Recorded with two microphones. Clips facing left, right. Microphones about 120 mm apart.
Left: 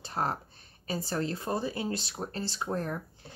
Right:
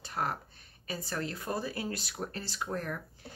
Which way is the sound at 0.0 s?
30° left (ahead or behind).